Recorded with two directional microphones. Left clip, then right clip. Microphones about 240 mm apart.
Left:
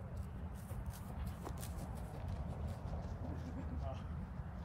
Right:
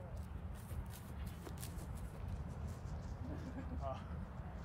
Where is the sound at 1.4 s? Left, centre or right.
Left.